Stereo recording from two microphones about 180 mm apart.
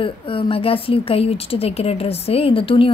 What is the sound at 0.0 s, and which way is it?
A woman's voice, 30° left (ahead or behind).